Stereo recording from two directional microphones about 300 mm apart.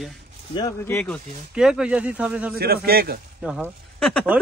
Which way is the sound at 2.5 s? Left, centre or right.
Right.